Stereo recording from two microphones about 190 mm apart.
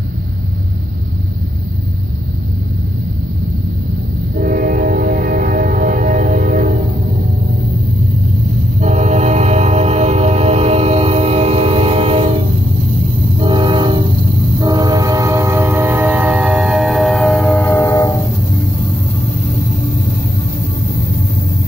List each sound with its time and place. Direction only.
4.4 s train: 50° right (ahead or behind)
8.8 s music: 40° right (ahead or behind)
13.4 s train: 25° right (ahead or behind); by 18.1 s 15° left (ahead or behind)